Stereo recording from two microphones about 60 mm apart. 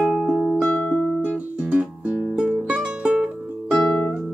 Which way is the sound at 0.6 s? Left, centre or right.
Left.